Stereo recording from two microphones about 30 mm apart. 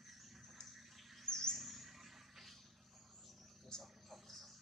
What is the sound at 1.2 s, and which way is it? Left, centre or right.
Bird, centre.